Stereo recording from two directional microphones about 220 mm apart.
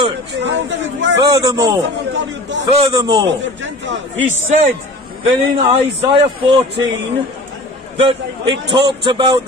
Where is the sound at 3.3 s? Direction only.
55° right (ahead or behind).